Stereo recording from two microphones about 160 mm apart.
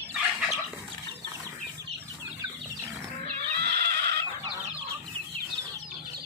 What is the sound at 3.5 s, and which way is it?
Neigh, 90° right.